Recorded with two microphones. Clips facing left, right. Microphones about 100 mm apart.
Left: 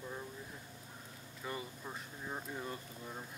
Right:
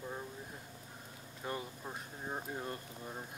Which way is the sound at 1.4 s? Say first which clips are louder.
Right 2 dB; 50° right (ahead or behind).